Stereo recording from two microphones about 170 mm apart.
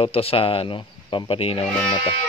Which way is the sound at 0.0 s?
35° left (ahead or behind).